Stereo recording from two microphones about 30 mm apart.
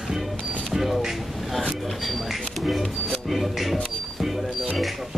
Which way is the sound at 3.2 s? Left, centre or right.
Centre.